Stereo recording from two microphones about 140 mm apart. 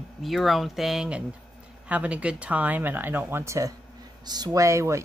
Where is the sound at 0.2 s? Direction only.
Centre (ahead or behind).